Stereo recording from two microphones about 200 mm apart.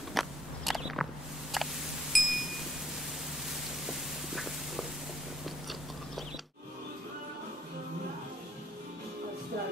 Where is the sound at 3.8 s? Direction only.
Centre (ahead or behind).